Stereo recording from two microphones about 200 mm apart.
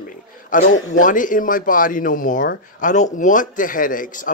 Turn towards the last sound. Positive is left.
turn(degrees=40)  # may be behind; listen again after turning